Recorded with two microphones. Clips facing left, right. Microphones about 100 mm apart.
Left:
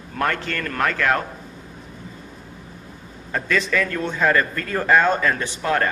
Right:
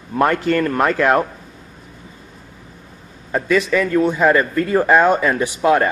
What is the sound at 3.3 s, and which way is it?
Speech, 15° right (ahead or behind).